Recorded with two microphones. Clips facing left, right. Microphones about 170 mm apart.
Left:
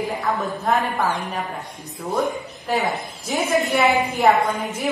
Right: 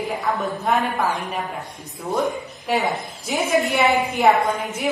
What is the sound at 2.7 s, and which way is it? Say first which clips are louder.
Speech: right 1 dB; centre (ahead or behind).